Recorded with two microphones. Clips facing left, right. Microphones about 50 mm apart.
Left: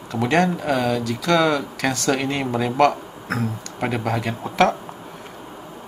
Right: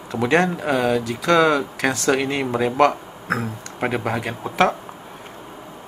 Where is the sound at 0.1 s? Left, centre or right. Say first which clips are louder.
Right 1 dB; right.